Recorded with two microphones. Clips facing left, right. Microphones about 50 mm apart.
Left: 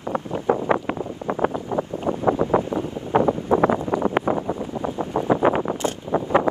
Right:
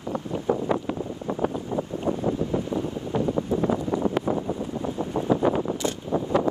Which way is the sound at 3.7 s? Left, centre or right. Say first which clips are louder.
Left 3 dB; left.